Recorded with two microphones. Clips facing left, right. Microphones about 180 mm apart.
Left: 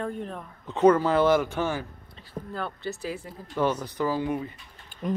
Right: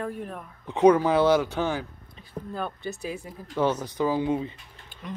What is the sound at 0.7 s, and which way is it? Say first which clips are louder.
Speech: right 1 dB; 15° right (ahead or behind).